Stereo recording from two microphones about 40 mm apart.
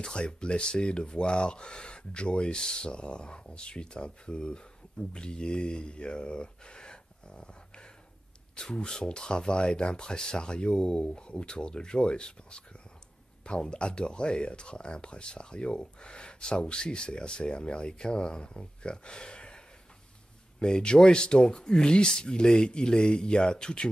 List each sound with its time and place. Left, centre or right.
0.0 s speech: left